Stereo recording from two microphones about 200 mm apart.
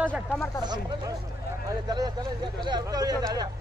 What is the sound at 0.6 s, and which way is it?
Speech, 20° right (ahead or behind).